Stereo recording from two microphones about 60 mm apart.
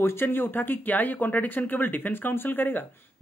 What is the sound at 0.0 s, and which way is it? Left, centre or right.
Speech, left.